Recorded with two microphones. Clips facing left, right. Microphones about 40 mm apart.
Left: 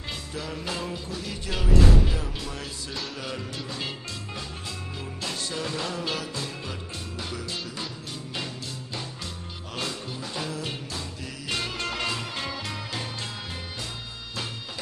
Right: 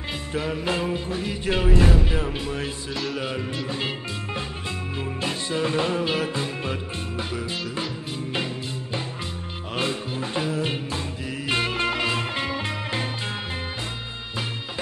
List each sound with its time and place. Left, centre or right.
0.3 s music: right
2.9 s music: centre
3.2 s music: right
5.2 s music: right
9.8 s music: right